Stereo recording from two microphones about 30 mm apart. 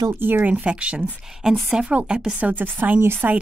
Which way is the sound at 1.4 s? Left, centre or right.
Centre.